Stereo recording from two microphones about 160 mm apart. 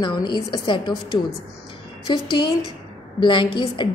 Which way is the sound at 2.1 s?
30° left (ahead or behind).